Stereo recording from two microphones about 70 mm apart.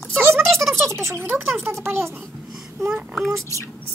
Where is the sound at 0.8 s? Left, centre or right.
Right.